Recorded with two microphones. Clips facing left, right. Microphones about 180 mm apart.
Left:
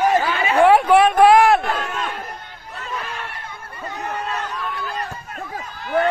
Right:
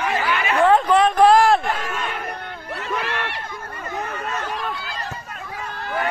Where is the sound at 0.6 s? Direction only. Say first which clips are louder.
Left 3 dB; 10° left (ahead or behind).